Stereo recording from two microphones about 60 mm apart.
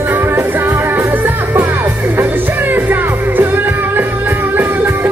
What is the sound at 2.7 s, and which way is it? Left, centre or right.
Music, right.